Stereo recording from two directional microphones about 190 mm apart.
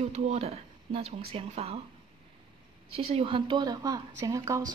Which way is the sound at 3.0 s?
30° right (ahead or behind).